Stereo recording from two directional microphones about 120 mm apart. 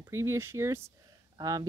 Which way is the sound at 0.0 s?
25° right (ahead or behind).